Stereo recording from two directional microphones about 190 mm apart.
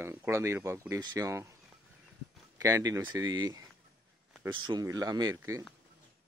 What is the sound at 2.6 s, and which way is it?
Speech, 20° right (ahead or behind).